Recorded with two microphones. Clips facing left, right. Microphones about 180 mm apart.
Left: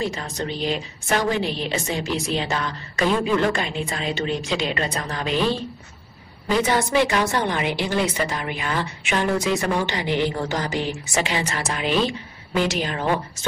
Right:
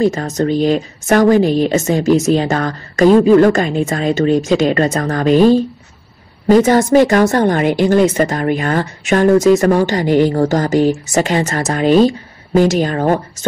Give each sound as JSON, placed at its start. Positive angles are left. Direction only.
{"t": 0.0, "sound": "a woman's voice", "side_deg": -45}